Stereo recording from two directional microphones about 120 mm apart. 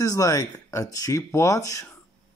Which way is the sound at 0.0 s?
25° left (ahead or behind).